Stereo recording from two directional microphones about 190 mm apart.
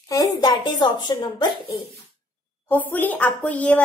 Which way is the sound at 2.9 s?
10° left (ahead or behind).